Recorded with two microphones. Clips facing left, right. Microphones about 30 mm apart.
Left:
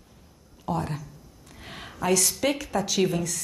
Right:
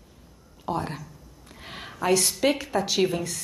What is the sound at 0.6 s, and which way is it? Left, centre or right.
Speech, right.